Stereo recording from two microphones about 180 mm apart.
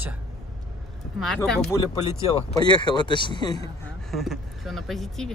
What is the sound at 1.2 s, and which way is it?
Speech, centre (ahead or behind).